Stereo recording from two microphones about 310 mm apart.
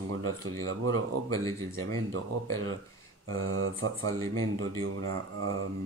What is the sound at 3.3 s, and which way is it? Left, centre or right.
Speech, right.